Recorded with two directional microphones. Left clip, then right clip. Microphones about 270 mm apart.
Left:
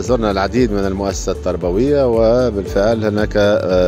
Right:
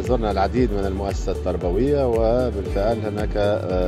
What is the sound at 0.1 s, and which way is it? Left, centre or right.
Speech, left.